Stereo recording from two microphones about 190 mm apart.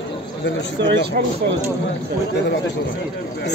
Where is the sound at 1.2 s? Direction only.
50° right (ahead or behind).